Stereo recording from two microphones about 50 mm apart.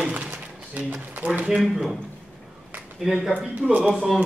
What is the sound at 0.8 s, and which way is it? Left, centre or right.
Speech, right.